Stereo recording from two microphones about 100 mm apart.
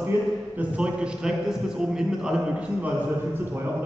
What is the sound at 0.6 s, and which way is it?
A man's voice, 10° right (ahead or behind).